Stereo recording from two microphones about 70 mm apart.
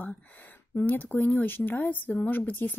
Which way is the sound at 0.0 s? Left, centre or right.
Left.